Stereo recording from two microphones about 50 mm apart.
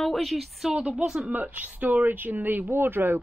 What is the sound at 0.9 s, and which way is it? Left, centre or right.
Speech, centre.